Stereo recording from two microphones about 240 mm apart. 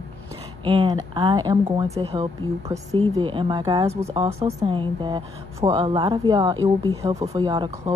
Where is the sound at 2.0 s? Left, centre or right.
Right.